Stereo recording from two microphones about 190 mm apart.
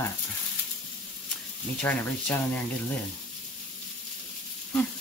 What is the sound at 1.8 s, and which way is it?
Speech, 5° left (ahead or behind).